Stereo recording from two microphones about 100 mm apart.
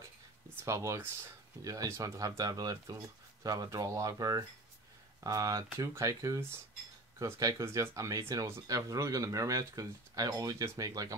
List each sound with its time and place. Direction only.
0.7 s speech: 30° right (ahead or behind)